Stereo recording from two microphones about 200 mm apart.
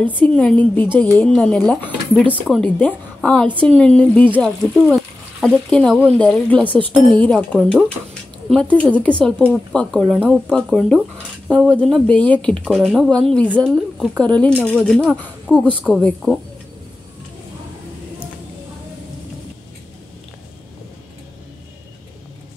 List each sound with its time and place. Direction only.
0.0 s speech: 5° left (ahead or behind)